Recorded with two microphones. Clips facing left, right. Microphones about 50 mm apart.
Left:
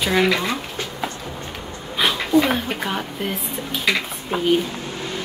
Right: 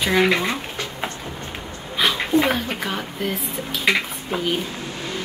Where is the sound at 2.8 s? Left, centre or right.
Centre.